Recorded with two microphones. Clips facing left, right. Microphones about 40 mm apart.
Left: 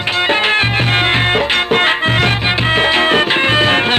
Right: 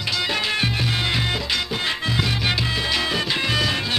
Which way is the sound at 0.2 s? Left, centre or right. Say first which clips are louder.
Left 11 dB; left.